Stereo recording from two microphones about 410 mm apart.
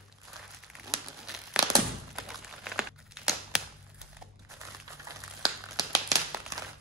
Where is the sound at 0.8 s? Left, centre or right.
Centre.